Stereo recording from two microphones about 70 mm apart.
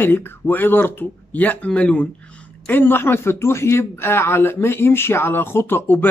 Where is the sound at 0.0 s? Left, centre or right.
Left.